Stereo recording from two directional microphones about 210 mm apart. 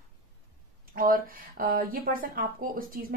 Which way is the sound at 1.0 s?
40° right (ahead or behind).